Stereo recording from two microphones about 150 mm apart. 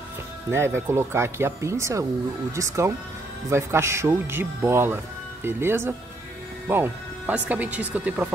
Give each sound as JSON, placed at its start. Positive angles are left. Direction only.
{"t": 0.5, "sound": "speech", "side_deg": -15}